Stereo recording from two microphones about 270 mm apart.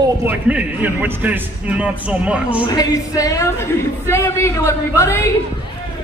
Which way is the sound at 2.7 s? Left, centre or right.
Centre.